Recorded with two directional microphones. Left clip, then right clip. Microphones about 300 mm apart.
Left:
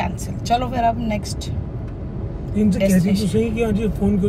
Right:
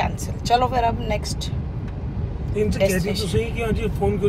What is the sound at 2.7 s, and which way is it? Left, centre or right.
Speech, centre.